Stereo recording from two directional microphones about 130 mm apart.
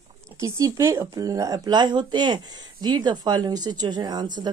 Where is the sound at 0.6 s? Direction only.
25° right (ahead or behind).